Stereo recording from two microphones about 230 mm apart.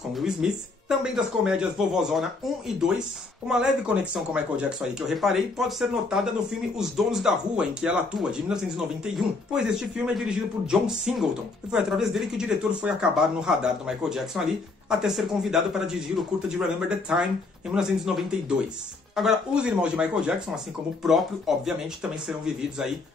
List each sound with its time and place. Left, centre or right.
0.1 s speech: centre